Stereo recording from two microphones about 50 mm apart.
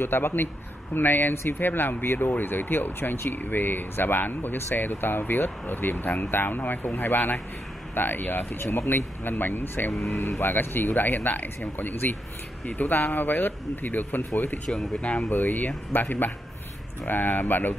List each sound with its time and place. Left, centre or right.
0.0 s a man's voice: left
14.7 s speech: centre
15.2 s a man's voice: left